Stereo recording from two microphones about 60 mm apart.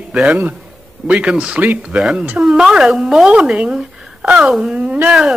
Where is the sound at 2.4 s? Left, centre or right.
Centre.